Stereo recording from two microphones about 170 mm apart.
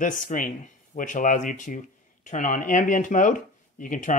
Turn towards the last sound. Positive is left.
turn(degrees=50)  # may be behind; listen again after turning